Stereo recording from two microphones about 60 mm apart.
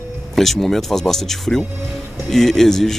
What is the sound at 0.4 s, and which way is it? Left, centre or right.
Speech, centre.